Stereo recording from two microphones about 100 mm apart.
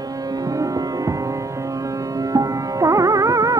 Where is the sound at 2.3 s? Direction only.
35° right (ahead or behind).